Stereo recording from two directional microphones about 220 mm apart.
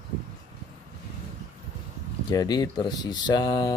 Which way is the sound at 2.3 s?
15° left (ahead or behind).